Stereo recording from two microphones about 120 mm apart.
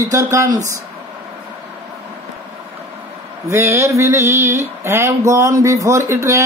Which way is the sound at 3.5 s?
25° right (ahead or behind).